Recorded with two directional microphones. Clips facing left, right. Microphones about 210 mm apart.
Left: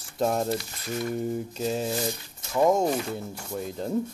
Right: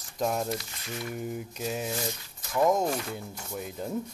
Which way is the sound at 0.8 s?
40° left (ahead or behind).